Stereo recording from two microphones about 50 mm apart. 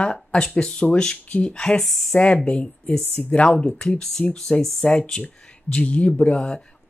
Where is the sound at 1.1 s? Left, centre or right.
Left.